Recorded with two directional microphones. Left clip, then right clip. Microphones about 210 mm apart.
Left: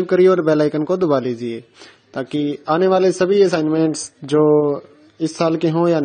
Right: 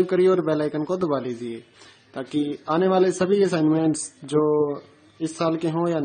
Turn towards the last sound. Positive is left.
turn(degrees=25)  # may be behind; listen again after turning